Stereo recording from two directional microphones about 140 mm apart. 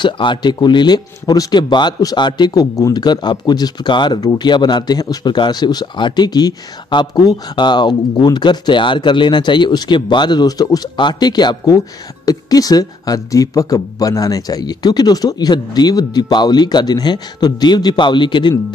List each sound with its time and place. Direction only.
0.0 s speech: 35° left (ahead or behind)